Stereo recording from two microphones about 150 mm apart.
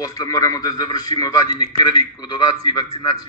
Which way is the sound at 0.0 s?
25° left (ahead or behind).